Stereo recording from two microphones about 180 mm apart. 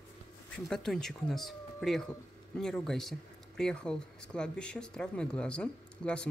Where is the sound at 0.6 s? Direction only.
5° left (ahead or behind).